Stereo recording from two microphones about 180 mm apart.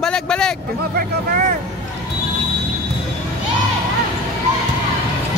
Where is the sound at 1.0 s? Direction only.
45° right (ahead or behind).